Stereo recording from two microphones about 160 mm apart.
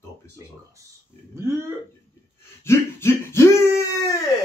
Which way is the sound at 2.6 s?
15° left (ahead or behind).